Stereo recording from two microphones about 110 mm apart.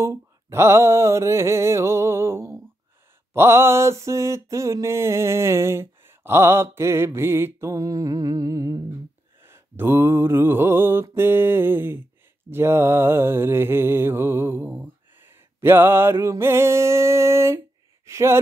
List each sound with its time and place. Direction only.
0.0 s mantra: 25° right (ahead or behind)
9.4 s mantra: 20° right (ahead or behind)
18.0 s speech: 25° right (ahead or behind)